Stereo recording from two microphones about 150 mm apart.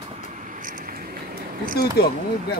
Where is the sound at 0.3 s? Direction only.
60° right (ahead or behind); by 1.8 s 75° right (ahead or behind).